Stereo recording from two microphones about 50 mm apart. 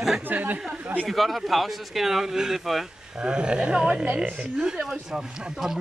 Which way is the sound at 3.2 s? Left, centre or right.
Centre.